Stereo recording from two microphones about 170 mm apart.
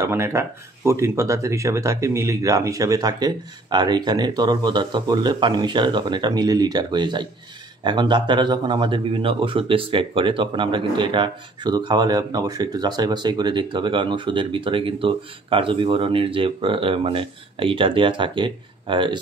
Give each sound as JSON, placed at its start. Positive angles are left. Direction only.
{"t": 0.0, "sound": "speech", "side_deg": -15}